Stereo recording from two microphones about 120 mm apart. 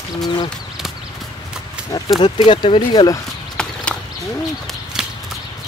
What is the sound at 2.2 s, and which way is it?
Speech, 40° left (ahead or behind).